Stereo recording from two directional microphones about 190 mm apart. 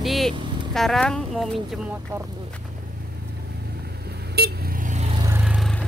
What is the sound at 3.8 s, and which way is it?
Vehicle, 60° right (ahead or behind).